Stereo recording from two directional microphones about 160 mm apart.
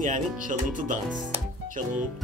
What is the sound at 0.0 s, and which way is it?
Speech, 55° right (ahead or behind).